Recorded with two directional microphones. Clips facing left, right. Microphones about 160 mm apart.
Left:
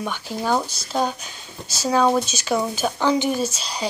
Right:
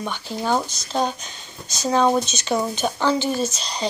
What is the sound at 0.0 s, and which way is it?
Speech, 10° left (ahead or behind).